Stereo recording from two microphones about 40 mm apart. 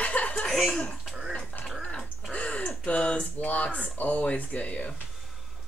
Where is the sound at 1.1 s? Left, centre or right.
Centre.